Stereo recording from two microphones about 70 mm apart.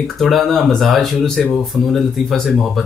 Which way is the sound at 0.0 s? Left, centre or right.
Centre.